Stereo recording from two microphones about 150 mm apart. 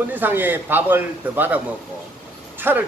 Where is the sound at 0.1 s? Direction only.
10° right (ahead or behind).